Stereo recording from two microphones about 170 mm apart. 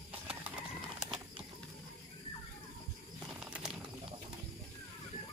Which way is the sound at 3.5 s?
5° right (ahead or behind).